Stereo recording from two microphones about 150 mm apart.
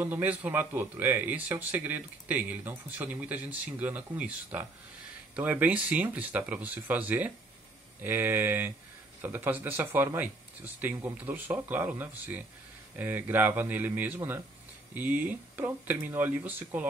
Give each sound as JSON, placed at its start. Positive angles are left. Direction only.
{"t": 0.0, "sound": "speech", "side_deg": -10}